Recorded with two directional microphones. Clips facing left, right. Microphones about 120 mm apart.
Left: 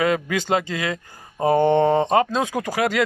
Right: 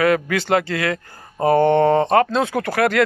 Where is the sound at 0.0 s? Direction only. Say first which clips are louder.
Right 3 dB; 20° left (ahead or behind).